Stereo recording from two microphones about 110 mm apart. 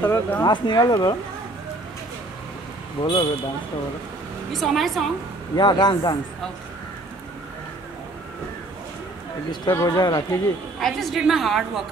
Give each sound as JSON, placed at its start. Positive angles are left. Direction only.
{"t": 0.0, "sound": "speech", "side_deg": 15}
{"t": 0.4, "sound": "speech", "side_deg": 40}
{"t": 3.0, "sound": "speech", "side_deg": 45}
{"t": 4.5, "sound": "a woman's voice", "side_deg": 0}
{"t": 5.6, "sound": "speech", "side_deg": 40}
{"t": 9.8, "sound": "speech", "side_deg": 35}
{"t": 10.8, "sound": "a woman's voice", "side_deg": 0}